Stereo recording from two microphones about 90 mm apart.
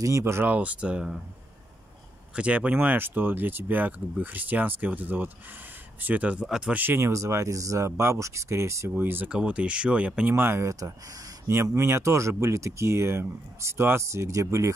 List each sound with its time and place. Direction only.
0.0 s speech: 30° right (ahead or behind); by 1.0 s 15° right (ahead or behind)
2.3 s speech: 15° right (ahead or behind)
6.8 s speech: 25° right (ahead or behind)
7.1 s speech: 35° right (ahead or behind)
8.9 s speech: 20° right (ahead or behind)
10.3 s speech: 25° right (ahead or behind)